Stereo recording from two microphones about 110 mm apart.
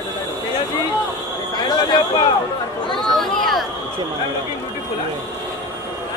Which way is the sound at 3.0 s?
5° left (ahead or behind).